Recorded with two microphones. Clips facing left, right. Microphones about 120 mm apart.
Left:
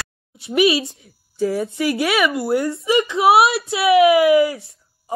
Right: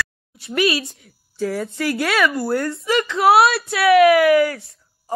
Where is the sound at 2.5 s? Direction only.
25° left (ahead or behind).